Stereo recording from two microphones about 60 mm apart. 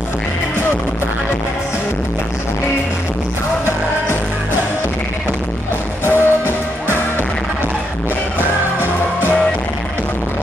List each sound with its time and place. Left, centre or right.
6.0 s music: right